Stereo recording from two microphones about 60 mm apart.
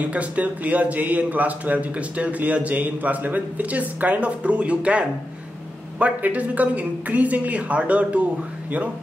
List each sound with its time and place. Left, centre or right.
0.0 s a man's voice: right